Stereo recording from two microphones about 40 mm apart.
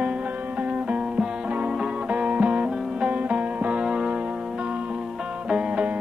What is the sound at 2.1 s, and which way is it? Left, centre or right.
Music, right.